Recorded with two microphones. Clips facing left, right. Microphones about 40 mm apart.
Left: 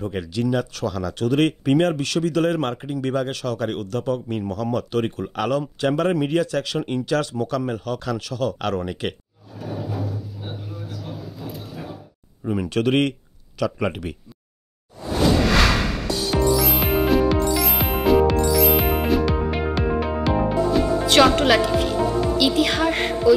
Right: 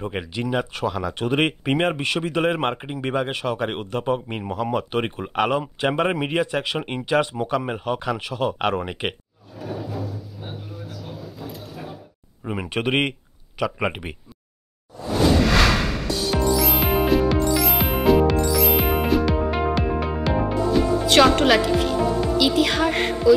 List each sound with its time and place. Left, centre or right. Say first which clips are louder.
0.0 s speech: left 3 dB; right
12.4 s speech: left 3 dB; right
15.3 s music: even; centre